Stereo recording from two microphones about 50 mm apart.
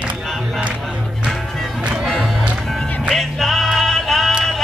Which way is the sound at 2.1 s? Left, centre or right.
Centre.